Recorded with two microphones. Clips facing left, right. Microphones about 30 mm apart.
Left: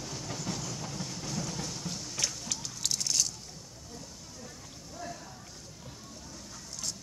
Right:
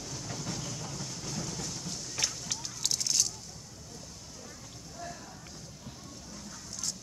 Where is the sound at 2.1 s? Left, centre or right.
Centre.